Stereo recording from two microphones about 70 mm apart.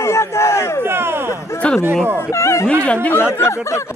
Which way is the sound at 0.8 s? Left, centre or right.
Right.